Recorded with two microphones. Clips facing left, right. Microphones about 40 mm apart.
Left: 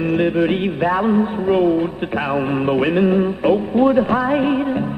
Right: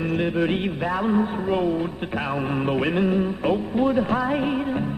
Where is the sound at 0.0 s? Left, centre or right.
Left.